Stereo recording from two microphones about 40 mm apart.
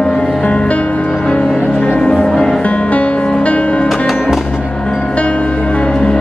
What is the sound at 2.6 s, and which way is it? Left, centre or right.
Music, left.